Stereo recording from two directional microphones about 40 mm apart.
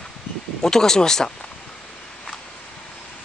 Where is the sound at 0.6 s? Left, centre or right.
Centre.